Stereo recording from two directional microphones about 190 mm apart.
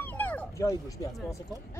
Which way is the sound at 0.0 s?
10° left (ahead or behind).